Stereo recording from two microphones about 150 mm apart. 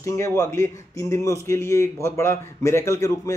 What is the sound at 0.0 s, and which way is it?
A man's voice, 20° left (ahead or behind).